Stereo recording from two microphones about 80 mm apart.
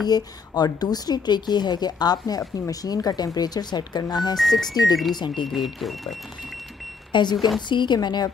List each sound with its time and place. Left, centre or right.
0.0 s a woman's voice: left
4.4 s speech: centre
5.1 s a woman's voice: left
5.5 s speech: centre
7.1 s a woman's voice: left